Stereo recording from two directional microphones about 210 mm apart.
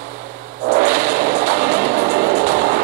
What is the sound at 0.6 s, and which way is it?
Music, 45° right (ahead or behind).